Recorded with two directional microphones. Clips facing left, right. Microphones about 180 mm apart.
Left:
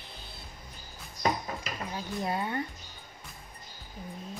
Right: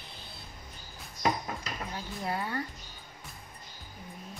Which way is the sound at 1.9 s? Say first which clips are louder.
Left 3 dB; 20° left (ahead or behind).